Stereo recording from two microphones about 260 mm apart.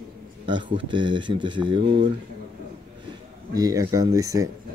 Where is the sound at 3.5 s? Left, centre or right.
Centre.